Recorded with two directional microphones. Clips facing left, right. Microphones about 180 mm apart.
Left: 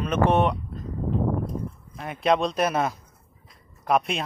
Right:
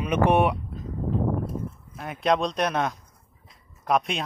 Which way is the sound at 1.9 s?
Centre (ahead or behind).